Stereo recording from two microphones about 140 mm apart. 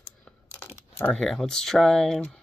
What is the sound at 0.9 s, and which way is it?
Speech, 10° left (ahead or behind).